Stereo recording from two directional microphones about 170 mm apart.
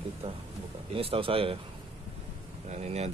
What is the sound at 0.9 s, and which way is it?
Speech, 35° right (ahead or behind).